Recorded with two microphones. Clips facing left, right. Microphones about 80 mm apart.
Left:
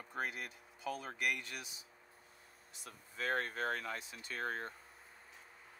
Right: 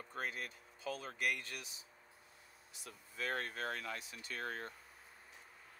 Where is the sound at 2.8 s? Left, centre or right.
Left.